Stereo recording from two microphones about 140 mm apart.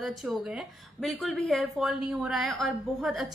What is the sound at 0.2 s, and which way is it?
A woman's voice, 5° right (ahead or behind).